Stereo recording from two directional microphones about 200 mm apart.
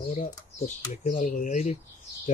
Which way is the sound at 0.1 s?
35° left (ahead or behind).